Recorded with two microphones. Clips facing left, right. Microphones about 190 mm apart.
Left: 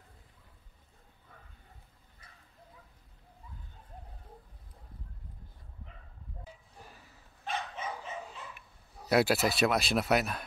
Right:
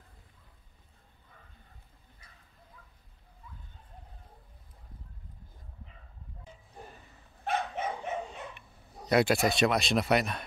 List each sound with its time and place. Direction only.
7.4 s dog: 60° right (ahead or behind)
8.5 s speech: 5° left (ahead or behind)